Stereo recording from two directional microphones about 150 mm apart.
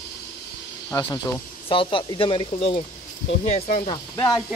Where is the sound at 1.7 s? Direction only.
35° left (ahead or behind).